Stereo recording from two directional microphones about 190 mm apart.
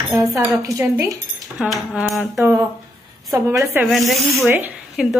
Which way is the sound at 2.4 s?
15° right (ahead or behind).